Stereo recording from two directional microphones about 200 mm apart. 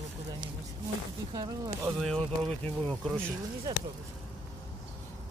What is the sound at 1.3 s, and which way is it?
Speech, 20° right (ahead or behind).